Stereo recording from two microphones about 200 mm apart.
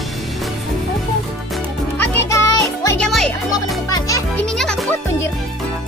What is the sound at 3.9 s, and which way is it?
Music, 15° left (ahead or behind).